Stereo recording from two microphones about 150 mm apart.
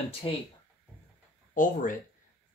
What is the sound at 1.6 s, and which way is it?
Speech, 60° left (ahead or behind).